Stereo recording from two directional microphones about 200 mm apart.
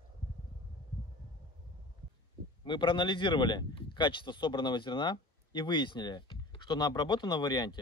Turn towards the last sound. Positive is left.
turn(degrees=20)  # may be behind; listen again after turning